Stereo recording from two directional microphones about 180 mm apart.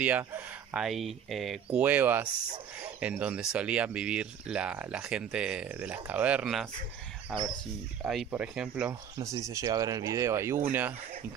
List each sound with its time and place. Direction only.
0.0 s speech: 10° right (ahead or behind)
8.0 s speech: 5° right (ahead or behind)
9.2 s speech: 15° right (ahead or behind)